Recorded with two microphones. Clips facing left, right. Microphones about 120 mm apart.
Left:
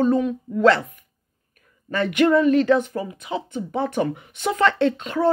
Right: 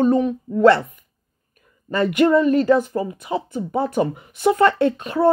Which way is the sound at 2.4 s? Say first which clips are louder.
Even; 40° right (ahead or behind).